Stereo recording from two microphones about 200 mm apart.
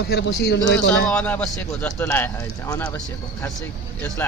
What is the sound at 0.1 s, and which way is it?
Speech, 55° left (ahead or behind).